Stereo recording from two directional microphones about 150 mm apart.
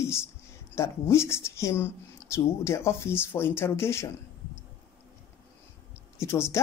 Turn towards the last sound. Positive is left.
turn(degrees=20)  # may be behind; listen again after turning